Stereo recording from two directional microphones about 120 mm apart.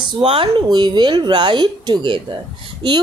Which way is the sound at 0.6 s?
35° right (ahead or behind).